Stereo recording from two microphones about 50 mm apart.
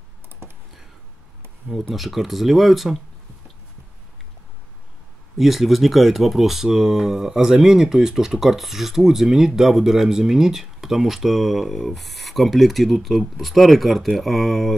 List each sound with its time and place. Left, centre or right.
0.4 s computer keyboard: right
1.9 s speech: centre
5.4 s speech: centre